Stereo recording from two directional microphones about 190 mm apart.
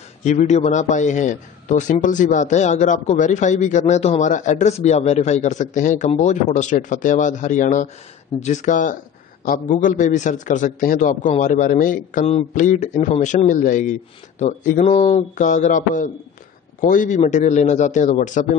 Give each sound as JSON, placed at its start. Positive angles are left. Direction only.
{"t": 0.2, "sound": "a man's voice", "side_deg": 40}